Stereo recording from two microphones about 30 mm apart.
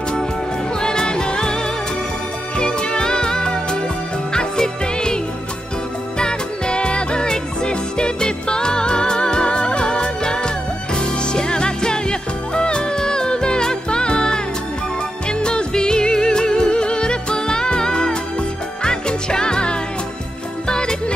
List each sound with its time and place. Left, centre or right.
0.7 s music: left